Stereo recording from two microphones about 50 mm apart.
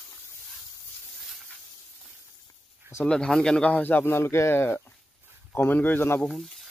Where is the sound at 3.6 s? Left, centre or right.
Left.